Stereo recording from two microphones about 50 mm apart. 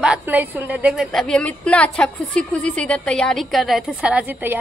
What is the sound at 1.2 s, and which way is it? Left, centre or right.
Speech, left.